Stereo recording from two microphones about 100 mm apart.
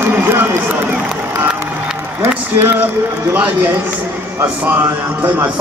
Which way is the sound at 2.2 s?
15° right (ahead or behind).